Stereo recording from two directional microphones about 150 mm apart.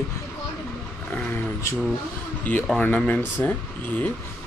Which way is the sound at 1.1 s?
15° left (ahead or behind).